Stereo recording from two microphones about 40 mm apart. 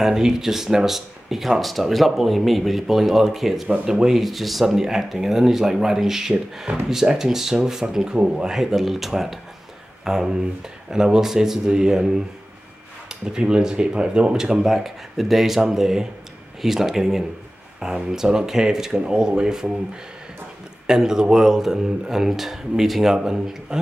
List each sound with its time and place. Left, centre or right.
0.0 s speech: centre
3.6 s speech: right
3.9 s speech: centre
4.2 s speech: centre
8.5 s speech: centre
13.2 s speech: right
20.8 s speech: centre